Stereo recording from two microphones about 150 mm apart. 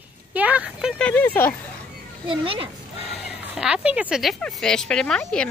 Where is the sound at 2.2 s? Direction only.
35° right (ahead or behind).